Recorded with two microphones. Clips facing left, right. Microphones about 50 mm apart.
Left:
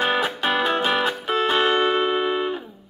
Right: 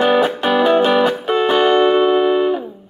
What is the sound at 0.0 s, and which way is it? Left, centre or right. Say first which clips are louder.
Music: right 7 dB; centre.